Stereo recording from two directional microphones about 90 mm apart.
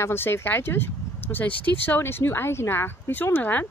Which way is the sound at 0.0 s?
25° left (ahead or behind).